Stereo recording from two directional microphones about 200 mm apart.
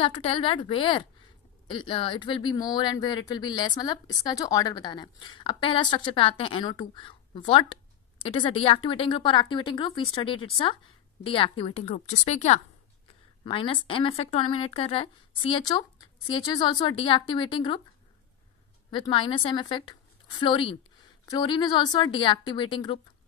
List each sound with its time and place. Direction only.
0.0 s a woman's voice: 25° left (ahead or behind)
18.9 s a woman's voice: 25° left (ahead or behind)